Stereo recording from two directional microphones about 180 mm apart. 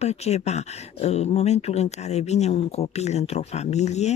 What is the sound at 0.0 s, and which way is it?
Speech, 35° left (ahead or behind).